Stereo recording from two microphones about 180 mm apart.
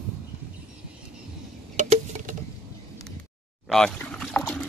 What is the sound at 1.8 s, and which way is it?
Patter, 45° right (ahead or behind).